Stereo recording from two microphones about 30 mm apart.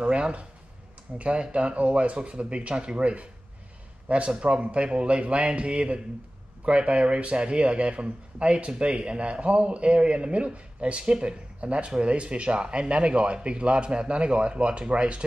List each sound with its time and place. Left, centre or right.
0.0 s a sound: right
1.1 s speech: right
4.4 s speech: right